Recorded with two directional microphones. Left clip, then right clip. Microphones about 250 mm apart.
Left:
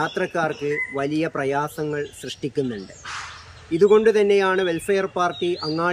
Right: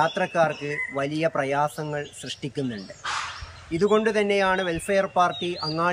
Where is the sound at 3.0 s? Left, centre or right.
Right.